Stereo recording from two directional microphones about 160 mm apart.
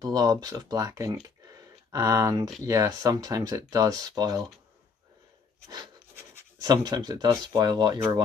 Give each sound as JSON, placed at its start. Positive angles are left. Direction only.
{"t": 0.0, "sound": "speech", "side_deg": -25}
{"t": 6.6, "sound": "speech", "side_deg": -25}